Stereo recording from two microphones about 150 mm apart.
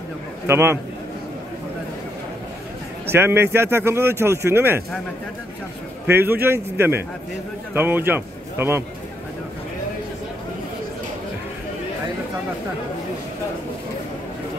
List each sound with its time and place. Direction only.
0.5 s speech: 15° right (ahead or behind)
3.1 s speech: 15° right (ahead or behind)
6.0 s speech: 15° right (ahead or behind)